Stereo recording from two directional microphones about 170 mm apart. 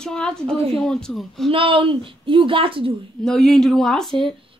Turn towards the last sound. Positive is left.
turn(degrees=0)  # may be behind; listen again after turning